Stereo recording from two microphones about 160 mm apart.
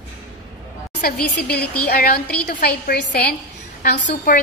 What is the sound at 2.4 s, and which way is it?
A woman's voice, 85° left.